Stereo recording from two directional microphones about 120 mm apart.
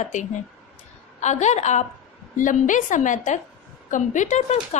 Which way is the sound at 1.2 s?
75° left (ahead or behind).